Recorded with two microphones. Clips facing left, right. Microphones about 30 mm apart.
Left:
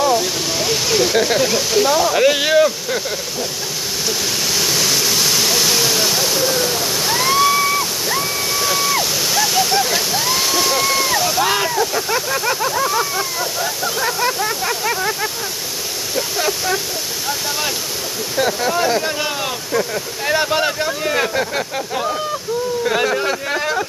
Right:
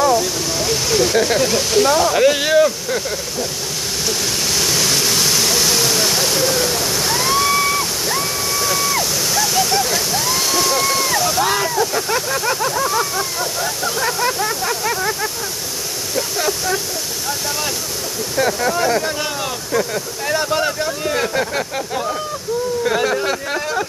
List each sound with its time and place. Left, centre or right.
0.0 s speech: centre
4.5 s waterfall: centre
6.5 s waterfall: centre
6.8 s waterfall: centre
7.1 s a sound: centre
8.1 s waterfall: centre
11.7 s speech: centre
16.3 s speech: centre
18.4 s speech: centre